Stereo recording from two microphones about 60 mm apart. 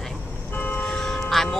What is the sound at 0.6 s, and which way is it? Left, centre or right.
Church bell, left.